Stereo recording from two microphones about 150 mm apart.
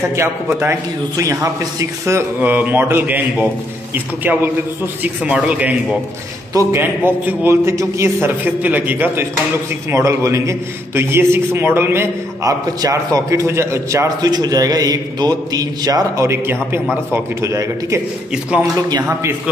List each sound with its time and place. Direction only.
0.6 s a man's voice: 20° right (ahead or behind)
19.0 s a man's voice: 15° right (ahead or behind)